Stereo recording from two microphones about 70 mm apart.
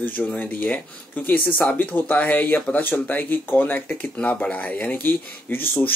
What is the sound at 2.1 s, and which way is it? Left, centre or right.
Speech, centre.